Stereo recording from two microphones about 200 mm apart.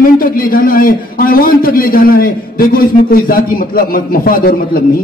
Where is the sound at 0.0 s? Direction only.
45° left (ahead or behind).